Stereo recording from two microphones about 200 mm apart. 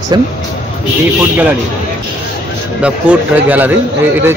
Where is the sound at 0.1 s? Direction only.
20° right (ahead or behind).